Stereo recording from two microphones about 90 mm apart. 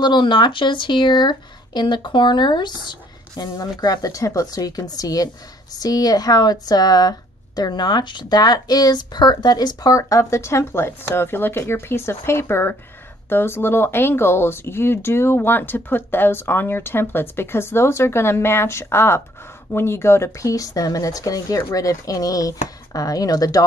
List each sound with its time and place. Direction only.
0.0 s speech: 55° left (ahead or behind)
3.8 s speech: 45° left (ahead or behind)